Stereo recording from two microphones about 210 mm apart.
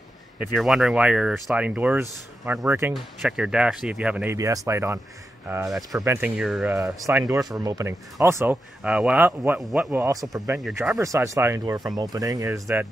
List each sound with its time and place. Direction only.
0.4 s speech: centre (ahead or behind)